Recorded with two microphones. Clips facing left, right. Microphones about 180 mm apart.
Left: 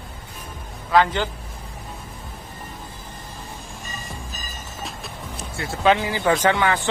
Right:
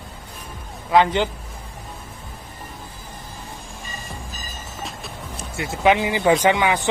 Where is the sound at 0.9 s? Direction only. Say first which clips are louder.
Right 2 dB; 20° right (ahead or behind).